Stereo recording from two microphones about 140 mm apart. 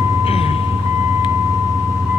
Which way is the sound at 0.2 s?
45° left (ahead or behind).